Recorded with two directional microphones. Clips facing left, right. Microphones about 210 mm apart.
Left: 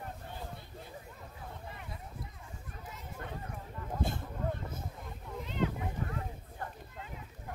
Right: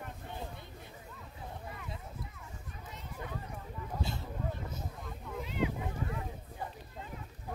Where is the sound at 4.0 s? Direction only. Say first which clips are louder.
Left 4 dB; 50° left (ahead or behind).